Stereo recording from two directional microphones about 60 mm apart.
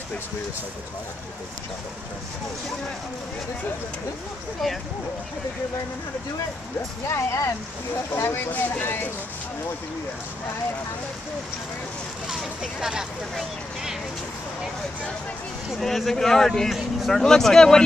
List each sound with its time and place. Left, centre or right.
7.1 s speech: left
8.5 s speech: left
12.3 s speech: centre
15.8 s speech: centre
17.2 s speech: centre